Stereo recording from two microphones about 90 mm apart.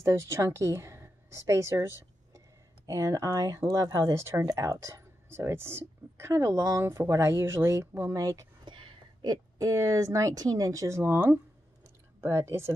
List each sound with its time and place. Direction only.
0.0 s a woman's voice: 30° right (ahead or behind)
8.6 s a sound: 60° right (ahead or behind)
9.3 s speech: 40° right (ahead or behind)